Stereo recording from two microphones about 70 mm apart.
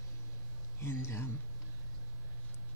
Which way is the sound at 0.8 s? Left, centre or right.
Left.